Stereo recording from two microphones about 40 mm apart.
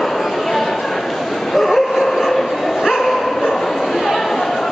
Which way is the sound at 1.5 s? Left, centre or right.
Centre.